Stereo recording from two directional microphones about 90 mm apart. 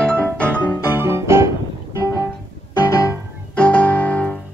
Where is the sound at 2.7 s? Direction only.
40° left (ahead or behind).